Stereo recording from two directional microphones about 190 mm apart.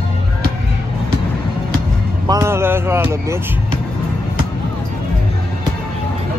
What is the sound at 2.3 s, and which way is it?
A man's voice, 15° right (ahead or behind).